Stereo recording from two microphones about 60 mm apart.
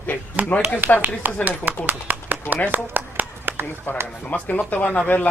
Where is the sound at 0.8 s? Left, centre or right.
Right.